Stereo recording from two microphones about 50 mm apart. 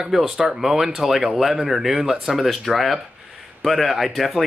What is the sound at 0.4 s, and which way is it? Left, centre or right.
Speech, centre.